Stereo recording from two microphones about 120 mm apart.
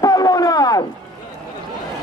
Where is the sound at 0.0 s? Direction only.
35° left (ahead or behind).